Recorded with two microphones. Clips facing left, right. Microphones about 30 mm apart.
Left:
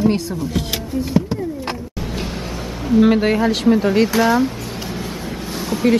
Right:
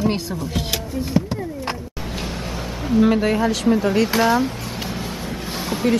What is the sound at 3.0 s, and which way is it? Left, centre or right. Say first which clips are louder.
Speech: left 2 dB; centre.